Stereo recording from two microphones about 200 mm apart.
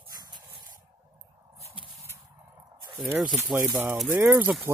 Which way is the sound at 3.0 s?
5° right (ahead or behind).